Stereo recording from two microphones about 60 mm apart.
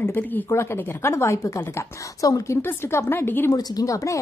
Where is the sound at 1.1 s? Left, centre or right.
Left.